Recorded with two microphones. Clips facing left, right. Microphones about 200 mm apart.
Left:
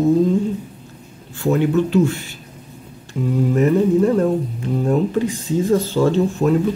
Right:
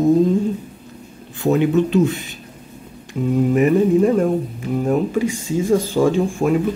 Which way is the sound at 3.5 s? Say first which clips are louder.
Even; 15° right (ahead or behind).